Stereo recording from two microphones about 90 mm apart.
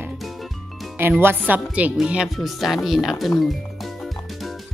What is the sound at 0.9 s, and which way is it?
Speech, 25° right (ahead or behind).